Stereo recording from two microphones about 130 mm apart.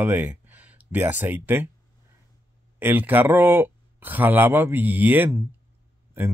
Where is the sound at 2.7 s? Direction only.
15° right (ahead or behind).